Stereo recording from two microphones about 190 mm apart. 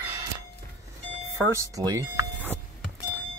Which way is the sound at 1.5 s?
15° right (ahead or behind).